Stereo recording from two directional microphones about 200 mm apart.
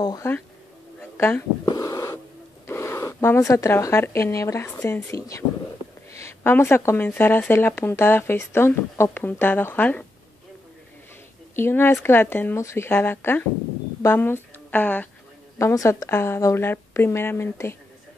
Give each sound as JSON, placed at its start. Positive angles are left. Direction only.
{"t": 0.0, "sound": "speech", "side_deg": 15}
{"t": 1.1, "sound": "a sound", "side_deg": 10}
{"t": 2.6, "sound": "speech", "side_deg": 10}
{"t": 11.5, "sound": "a woman's voice", "side_deg": 10}